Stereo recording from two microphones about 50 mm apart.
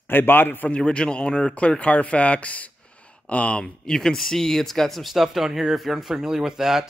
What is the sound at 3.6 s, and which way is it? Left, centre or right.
Speech, centre.